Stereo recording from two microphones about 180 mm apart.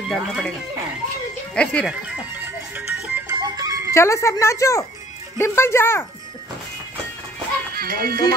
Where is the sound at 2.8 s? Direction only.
10° right (ahead or behind).